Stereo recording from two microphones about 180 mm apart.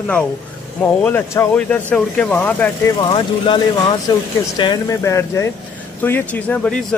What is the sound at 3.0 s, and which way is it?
Speech, 25° left (ahead or behind).